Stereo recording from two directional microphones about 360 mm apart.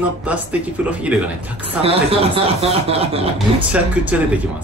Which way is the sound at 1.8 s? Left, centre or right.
Centre.